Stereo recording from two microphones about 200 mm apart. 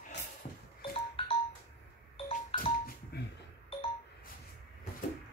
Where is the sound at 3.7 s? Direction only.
30° left (ahead or behind).